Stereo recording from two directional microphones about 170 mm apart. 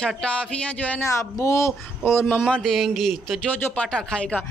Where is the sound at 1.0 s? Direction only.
15° left (ahead or behind).